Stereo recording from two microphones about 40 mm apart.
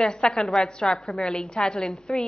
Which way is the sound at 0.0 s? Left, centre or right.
Centre.